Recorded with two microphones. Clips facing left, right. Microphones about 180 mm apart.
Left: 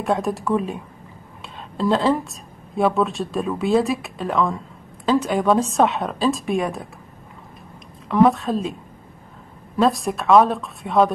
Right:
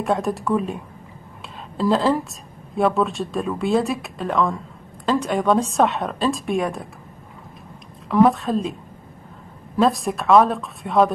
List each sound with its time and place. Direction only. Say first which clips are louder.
0.0 s a woman's voice: even; centre (ahead or behind)
8.1 s a woman's voice: even; centre (ahead or behind)
9.8 s a woman's voice: even; centre (ahead or behind)